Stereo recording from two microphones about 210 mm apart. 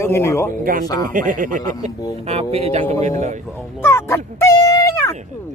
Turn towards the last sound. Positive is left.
turn(degrees=20)  # may be behind; listen again after turning